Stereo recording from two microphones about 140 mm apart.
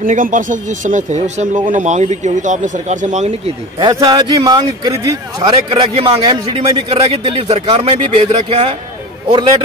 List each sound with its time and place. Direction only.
0.0 s a man's voice: 70° right (ahead or behind); by 3.9 s 45° right (ahead or behind)
3.9 s a man's voice: 30° right (ahead or behind)
5.7 s a man's voice: 40° right (ahead or behind)